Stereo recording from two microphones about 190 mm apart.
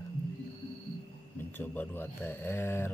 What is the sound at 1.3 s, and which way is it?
Speech, 10° left (ahead or behind).